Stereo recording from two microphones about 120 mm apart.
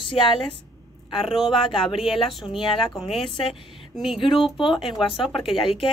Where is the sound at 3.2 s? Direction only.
45° left (ahead or behind).